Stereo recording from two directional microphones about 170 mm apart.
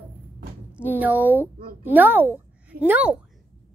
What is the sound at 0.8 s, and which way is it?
Speech, 10° right (ahead or behind).